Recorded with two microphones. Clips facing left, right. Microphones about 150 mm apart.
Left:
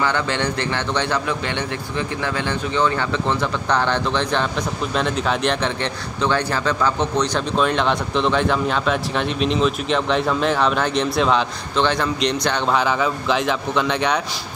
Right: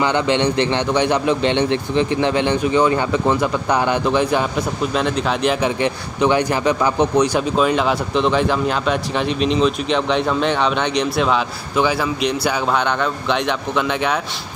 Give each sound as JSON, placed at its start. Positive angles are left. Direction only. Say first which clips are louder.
{"t": 0.0, "sound": "a man's voice", "louder": "right 4 dB", "side_deg": -20}